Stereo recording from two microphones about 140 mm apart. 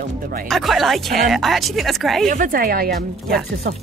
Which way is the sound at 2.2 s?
75° right (ahead or behind).